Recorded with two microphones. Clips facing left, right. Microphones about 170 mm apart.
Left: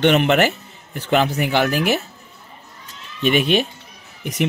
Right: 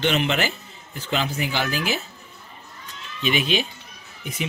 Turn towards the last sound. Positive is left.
turn(degrees=75)  # may be behind; listen again after turning